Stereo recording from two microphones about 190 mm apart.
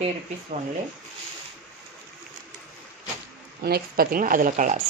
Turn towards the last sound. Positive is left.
turn(degrees=-45)  # may be behind; listen again after turning